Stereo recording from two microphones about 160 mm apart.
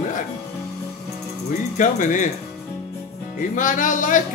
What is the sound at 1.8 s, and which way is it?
Speech, 55° left (ahead or behind).